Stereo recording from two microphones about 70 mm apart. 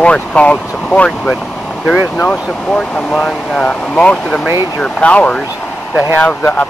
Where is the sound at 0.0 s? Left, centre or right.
Centre.